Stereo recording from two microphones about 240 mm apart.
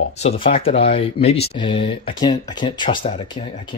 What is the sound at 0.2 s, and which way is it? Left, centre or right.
Speech, left.